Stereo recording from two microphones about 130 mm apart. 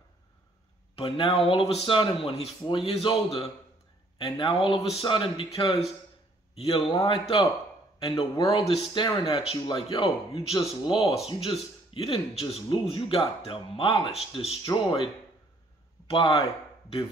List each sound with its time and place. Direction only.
0.9 s a man's voice: 45° left (ahead or behind)
14.6 s speech: 30° left (ahead or behind)
16.1 s speech: 40° left (ahead or behind)